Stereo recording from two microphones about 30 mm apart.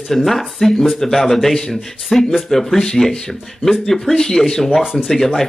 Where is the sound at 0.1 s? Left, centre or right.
Centre.